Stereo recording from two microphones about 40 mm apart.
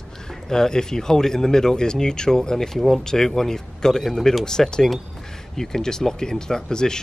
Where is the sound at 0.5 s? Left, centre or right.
Centre.